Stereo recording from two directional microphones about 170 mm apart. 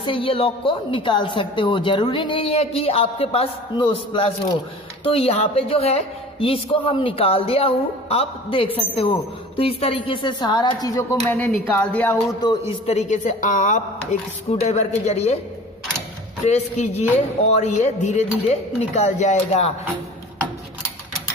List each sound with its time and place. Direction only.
0.0 s a woman's voice: 30° left (ahead or behind); by 12.2 s 10° left (ahead or behind)
12.8 s a woman's voice: 40° left (ahead or behind)
14.5 s a woman's voice: 40° left (ahead or behind)
16.4 s a woman's voice: 45° left (ahead or behind)